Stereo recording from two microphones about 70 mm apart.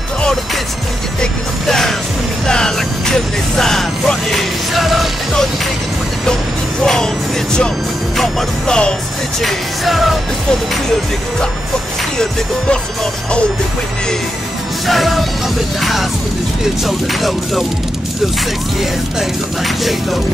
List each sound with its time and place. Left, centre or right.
1.2 s music: centre
6.8 s music: centre
8.2 s music: centre
9.4 s music: centre
12.2 s music: centre
14.9 s music: centre
19.8 s music: centre